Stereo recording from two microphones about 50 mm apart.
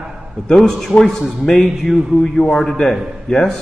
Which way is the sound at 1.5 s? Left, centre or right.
Centre.